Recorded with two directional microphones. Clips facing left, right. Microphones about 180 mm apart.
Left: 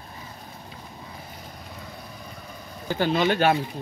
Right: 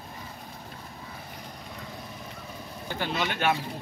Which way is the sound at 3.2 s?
35° left (ahead or behind).